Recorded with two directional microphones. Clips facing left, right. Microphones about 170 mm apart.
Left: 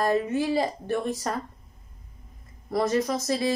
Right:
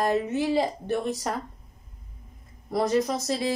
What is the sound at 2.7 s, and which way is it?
Speech, 15° right (ahead or behind).